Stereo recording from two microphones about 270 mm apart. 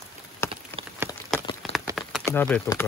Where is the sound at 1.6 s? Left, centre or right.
Centre.